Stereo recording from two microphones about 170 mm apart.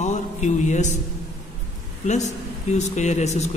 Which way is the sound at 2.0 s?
45° left (ahead or behind).